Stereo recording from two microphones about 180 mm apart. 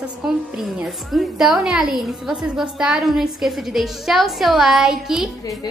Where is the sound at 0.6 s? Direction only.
Centre (ahead or behind).